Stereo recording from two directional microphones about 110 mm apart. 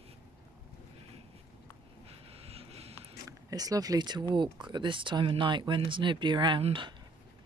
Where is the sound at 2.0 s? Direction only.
65° right (ahead or behind).